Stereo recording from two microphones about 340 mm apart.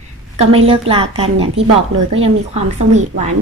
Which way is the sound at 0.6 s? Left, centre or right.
Centre.